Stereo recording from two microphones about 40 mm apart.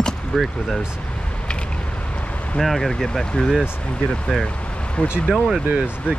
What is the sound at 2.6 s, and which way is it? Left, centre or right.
Speech, centre.